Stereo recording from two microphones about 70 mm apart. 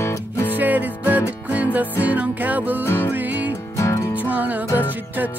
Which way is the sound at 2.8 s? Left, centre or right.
Left.